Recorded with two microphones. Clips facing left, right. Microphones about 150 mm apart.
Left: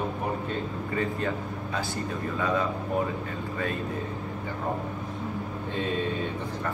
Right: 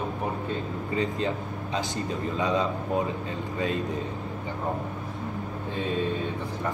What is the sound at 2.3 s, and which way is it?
Speech, 20° right (ahead or behind).